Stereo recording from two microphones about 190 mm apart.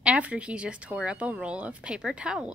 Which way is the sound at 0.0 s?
5° right (ahead or behind).